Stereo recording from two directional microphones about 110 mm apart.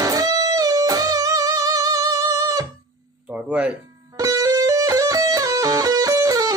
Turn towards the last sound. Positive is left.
turn(degrees=-30)  # may be behind; listen again after turning